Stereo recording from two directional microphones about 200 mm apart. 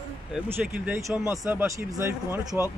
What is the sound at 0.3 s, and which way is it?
Speech, 10° right (ahead or behind).